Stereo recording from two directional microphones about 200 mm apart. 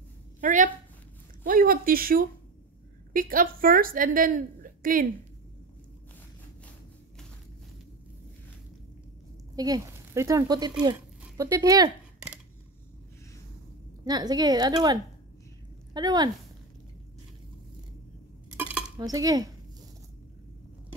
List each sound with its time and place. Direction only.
0.4 s a woman's voice: 40° right (ahead or behind)
9.6 s speech: 15° right (ahead or behind)
14.0 s a woman's voice: 20° right (ahead or behind)
18.9 s speech: 20° right (ahead or behind)